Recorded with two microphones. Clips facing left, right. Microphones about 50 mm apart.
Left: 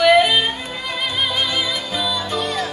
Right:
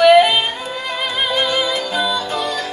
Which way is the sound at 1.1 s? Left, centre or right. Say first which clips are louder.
Right 3 dB; right.